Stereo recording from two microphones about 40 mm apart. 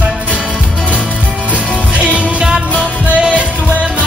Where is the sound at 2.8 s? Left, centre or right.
Right.